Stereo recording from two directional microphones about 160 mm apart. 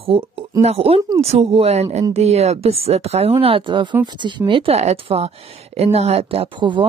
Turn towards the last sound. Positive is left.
turn(degrees=-30)  # may be behind; listen again after turning